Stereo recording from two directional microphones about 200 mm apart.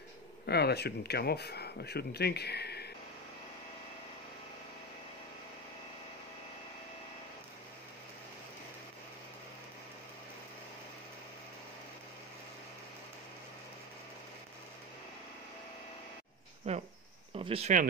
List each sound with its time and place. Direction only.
0.5 s speech: 55° left (ahead or behind)
16.6 s a sound: 30° right (ahead or behind)
17.4 s speech: 30° right (ahead or behind)